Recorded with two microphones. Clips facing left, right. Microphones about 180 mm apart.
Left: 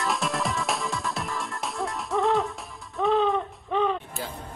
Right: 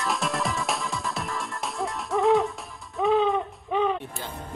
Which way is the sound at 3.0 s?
Centre (ahead or behind).